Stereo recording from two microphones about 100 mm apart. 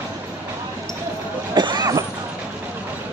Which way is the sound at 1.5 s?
45° right (ahead or behind).